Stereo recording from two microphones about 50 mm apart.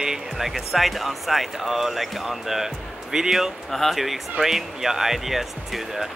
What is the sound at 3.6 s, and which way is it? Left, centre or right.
Speech, centre.